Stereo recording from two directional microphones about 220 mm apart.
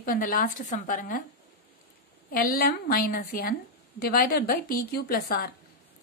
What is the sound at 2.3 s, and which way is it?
A woman's voice, 40° left (ahead or behind).